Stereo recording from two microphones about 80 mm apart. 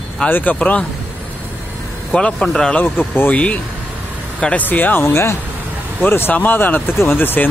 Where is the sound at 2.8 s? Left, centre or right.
Left.